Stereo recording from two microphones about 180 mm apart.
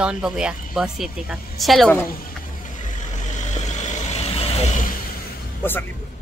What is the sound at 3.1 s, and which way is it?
Vehicle, 40° left (ahead or behind).